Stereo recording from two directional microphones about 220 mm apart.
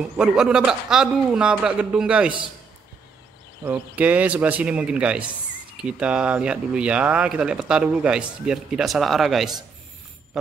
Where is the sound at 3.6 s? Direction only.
10° right (ahead or behind).